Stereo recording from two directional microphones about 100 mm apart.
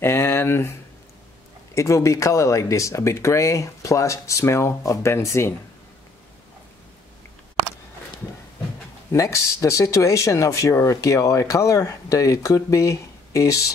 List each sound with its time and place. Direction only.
0.0 s a sound: 25° left (ahead or behind)
1.8 s speech: 30° left (ahead or behind)
9.1 s speech: 30° left (ahead or behind)